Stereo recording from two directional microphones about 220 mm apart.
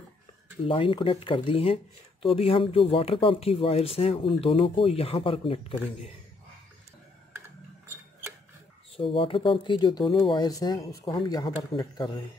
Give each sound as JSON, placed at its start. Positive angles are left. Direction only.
{"t": 0.7, "sound": "speech", "side_deg": 25}
{"t": 8.9, "sound": "speech", "side_deg": 25}